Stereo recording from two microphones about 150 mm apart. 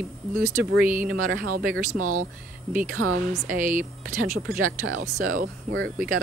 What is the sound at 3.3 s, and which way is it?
Speech, 65° right (ahead or behind).